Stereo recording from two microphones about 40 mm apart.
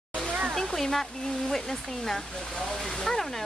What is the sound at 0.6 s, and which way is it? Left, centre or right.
Speech, centre.